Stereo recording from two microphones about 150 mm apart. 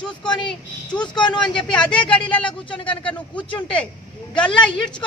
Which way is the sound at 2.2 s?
35° left (ahead or behind).